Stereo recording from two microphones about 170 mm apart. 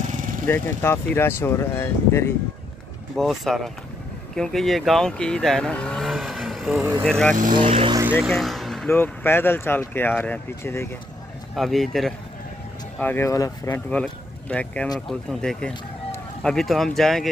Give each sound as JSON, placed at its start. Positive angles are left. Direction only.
{"t": 0.1, "sound": "vehicle", "side_deg": -50}
{"t": 0.5, "sound": "speech", "side_deg": 15}
{"t": 3.2, "sound": "speech", "side_deg": 0}
{"t": 6.8, "sound": "speech", "side_deg": -15}
{"t": 7.1, "sound": "speech", "side_deg": 5}
{"t": 7.5, "sound": "speech", "side_deg": -30}
{"t": 8.0, "sound": "speech", "side_deg": -10}
{"t": 8.3, "sound": "vehicle", "side_deg": 0}
{"t": 8.8, "sound": "speech", "side_deg": 10}
{"t": 11.5, "sound": "speech", "side_deg": 0}
{"t": 13.0, "sound": "speech", "side_deg": 15}
{"t": 13.8, "sound": "speech", "side_deg": 5}